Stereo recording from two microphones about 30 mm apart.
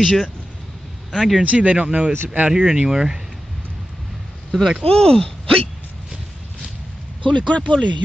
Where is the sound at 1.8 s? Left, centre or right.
Right.